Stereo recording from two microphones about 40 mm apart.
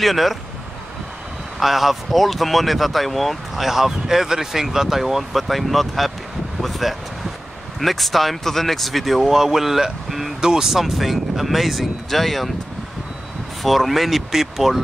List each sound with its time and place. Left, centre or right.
0.0 s speech: centre
1.6 s speech: centre
10.0 s a sound: centre
10.4 s speech: centre
10.7 s speech: centre
13.6 s speech: centre